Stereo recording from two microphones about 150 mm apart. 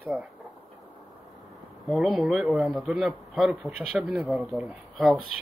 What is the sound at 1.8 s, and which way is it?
A man's voice, centre (ahead or behind).